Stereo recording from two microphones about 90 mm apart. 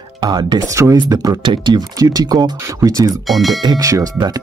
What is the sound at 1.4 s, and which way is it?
Speech, 65° right (ahead or behind).